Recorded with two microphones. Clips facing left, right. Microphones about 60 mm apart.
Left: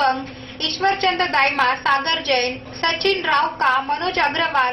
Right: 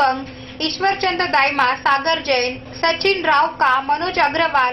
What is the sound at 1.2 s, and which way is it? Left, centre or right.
A woman's voice, right.